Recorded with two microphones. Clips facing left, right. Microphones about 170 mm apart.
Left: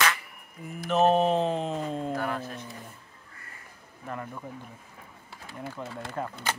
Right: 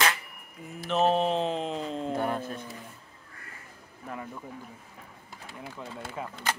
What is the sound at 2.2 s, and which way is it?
Speech, 25° right (ahead or behind).